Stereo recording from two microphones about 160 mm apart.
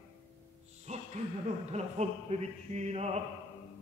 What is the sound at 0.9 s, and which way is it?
Speech, 45° right (ahead or behind).